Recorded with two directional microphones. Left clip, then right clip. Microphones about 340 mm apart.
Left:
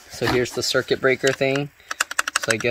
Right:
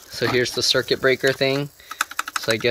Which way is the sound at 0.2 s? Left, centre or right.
Centre.